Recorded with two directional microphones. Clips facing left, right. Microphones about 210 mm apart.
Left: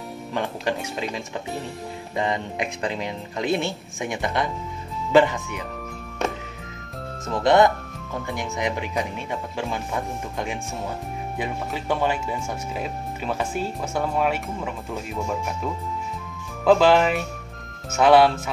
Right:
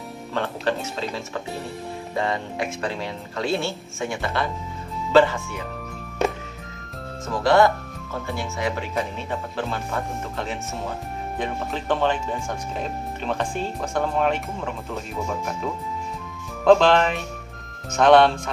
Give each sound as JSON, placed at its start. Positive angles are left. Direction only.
{"t": 0.3, "sound": "speech", "side_deg": 15}
{"t": 7.4, "sound": "speech", "side_deg": 20}